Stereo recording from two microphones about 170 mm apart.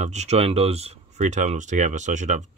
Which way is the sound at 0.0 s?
40° right (ahead or behind).